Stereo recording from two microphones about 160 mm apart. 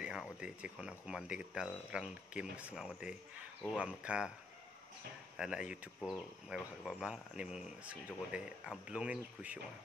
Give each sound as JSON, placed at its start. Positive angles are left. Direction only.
{"t": 0.0, "sound": "speech", "side_deg": -5}
{"t": 5.4, "sound": "speech", "side_deg": -5}